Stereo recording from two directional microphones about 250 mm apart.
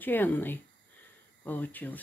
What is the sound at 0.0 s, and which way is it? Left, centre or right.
Speech, centre.